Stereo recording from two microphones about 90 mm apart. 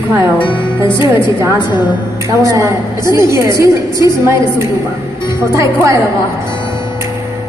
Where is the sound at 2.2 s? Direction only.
35° right (ahead or behind).